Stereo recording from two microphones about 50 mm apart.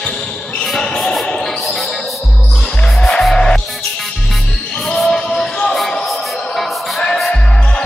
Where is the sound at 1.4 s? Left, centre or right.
Centre.